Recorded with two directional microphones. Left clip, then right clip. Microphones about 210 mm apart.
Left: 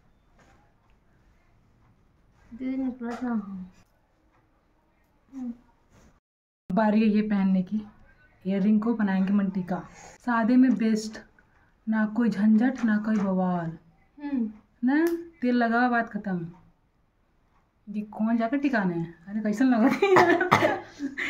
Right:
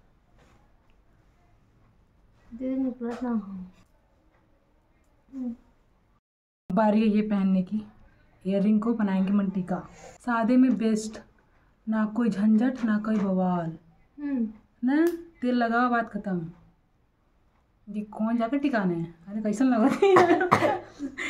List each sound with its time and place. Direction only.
2.6 s speech: 25° left (ahead or behind)
6.7 s a woman's voice: 10° right (ahead or behind)
14.2 s speech: 25° left (ahead or behind)
14.8 s a woman's voice: 10° right (ahead or behind)
17.9 s a woman's voice: 10° right (ahead or behind)
20.5 s speech: 25° left (ahead or behind)